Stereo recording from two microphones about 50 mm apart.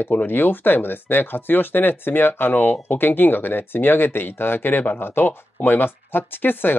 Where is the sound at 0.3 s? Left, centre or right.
Left.